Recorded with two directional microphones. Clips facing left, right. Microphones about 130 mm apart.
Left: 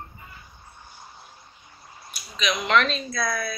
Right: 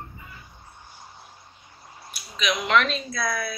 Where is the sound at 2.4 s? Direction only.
10° right (ahead or behind).